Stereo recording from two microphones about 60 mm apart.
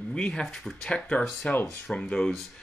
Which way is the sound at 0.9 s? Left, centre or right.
Centre.